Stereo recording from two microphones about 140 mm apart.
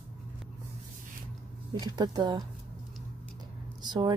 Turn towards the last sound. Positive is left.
turn(degrees=-30)  # may be behind; listen again after turning